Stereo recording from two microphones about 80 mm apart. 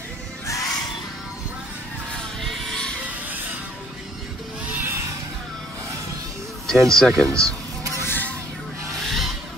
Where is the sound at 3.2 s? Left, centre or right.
Right.